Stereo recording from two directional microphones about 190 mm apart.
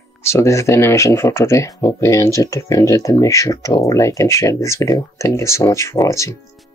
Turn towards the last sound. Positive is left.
turn(degrees=15)  # may be behind; listen again after turning